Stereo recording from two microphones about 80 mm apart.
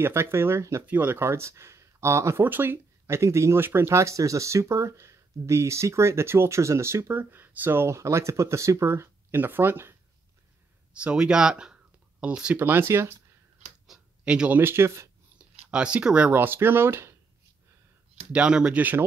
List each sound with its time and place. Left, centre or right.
0.0 s speech: right
0.8 s speech: right
2.4 s speech: right
10.9 s speech: centre
12.5 s speech: right
13.8 s a sound: centre
14.6 s speech: right
15.3 s a sound: centre
16.3 s speech: right
18.3 s speech: centre